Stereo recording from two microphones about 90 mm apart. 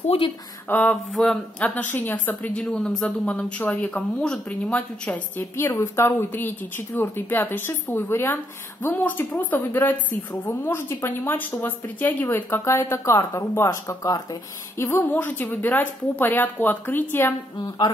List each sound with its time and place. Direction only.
0.1 s speech: 90° left
0.7 s speech: 15° left (ahead or behind)
1.1 s speech: 5° left (ahead or behind)
1.6 s a woman's voice: 20° left (ahead or behind)
5.6 s a woman's voice: 30° left (ahead or behind)
13.8 s speech: 45° left (ahead or behind)
14.8 s a woman's voice: 30° left (ahead or behind)